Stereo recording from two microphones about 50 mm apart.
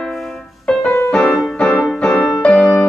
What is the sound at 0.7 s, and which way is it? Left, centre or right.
Music, centre.